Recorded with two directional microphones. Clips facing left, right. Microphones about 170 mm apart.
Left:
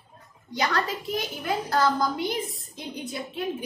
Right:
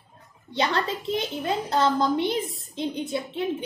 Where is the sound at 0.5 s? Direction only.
25° right (ahead or behind).